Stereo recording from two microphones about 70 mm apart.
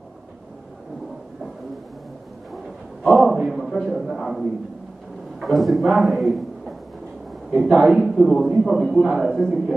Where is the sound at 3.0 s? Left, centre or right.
Centre.